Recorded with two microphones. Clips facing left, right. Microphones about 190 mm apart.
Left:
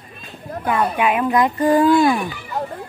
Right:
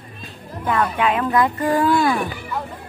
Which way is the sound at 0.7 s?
10° left (ahead or behind).